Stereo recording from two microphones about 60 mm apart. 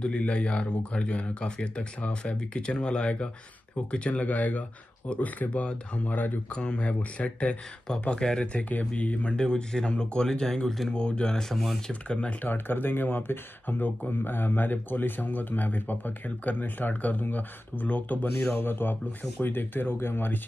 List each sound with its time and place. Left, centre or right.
0.0 s speech: centre
6.5 s speech: centre
8.5 s speech: left; by 11.8 s centre
11.9 s speech: left
12.4 s speech: left
18.5 s speech: left